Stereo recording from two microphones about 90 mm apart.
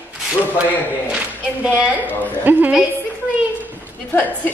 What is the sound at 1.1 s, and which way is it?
A woman's voice, 10° right (ahead or behind).